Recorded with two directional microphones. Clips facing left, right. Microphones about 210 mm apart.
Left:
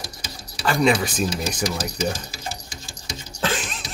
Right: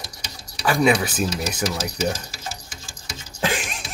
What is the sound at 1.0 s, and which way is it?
Speech, 5° right (ahead or behind).